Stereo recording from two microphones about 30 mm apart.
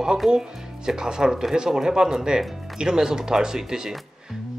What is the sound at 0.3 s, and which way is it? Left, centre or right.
Speech, right.